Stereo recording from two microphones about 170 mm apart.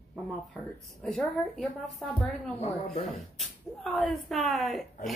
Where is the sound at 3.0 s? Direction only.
Centre (ahead or behind).